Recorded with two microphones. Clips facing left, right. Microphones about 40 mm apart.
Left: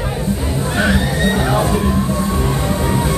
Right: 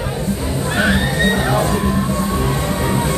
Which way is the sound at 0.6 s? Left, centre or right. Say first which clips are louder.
Even; centre.